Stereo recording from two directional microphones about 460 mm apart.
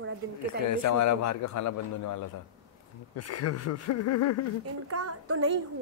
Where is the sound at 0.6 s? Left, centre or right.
Left.